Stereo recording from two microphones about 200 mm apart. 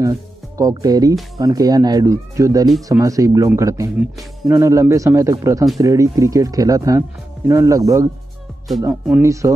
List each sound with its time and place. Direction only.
0.6 s speech: 20° right (ahead or behind)